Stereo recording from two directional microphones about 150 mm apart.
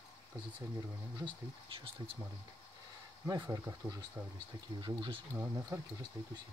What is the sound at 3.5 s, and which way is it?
Speech, 20° right (ahead or behind).